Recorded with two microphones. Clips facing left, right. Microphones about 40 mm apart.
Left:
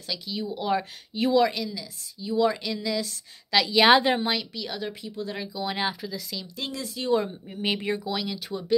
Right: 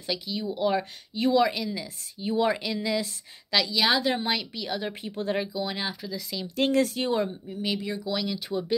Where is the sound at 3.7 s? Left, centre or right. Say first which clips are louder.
Left 8 dB; left.